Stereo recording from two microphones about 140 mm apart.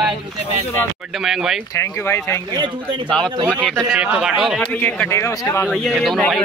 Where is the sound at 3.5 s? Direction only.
10° left (ahead or behind).